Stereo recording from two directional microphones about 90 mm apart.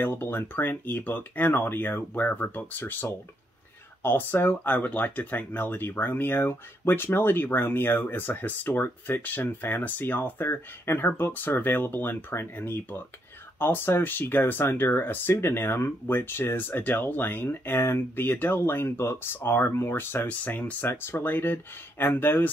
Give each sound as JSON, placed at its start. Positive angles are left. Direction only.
{"t": 0.0, "sound": "speech", "side_deg": 20}